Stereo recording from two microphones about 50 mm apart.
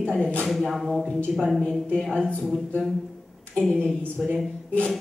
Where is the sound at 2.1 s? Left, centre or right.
Left.